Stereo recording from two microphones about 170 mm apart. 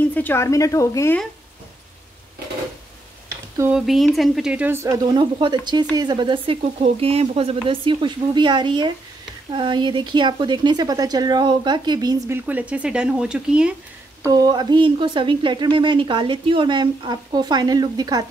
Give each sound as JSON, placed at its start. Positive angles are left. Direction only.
{"t": 0.0, "sound": "speech", "side_deg": 10}
{"t": 3.7, "sound": "a woman's voice", "side_deg": 0}
{"t": 12.4, "sound": "speech", "side_deg": -10}
{"t": 14.2, "sound": "speech", "side_deg": -25}